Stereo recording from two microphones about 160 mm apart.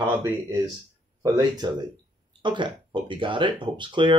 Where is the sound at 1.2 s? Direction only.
25° right (ahead or behind).